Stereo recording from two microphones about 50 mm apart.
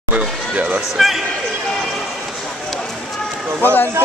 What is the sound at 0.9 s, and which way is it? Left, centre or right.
Speech, centre.